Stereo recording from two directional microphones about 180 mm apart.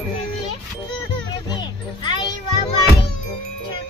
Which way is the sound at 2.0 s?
25° left (ahead or behind).